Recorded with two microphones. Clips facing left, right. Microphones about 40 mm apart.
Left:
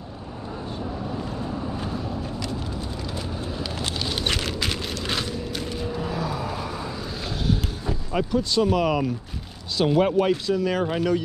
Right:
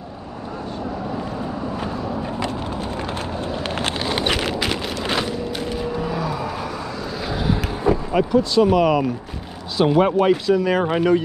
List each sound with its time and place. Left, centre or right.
4.1 s vehicle: right
7.9 s vehicle: right
8.3 s speech: centre; by 11.2 s right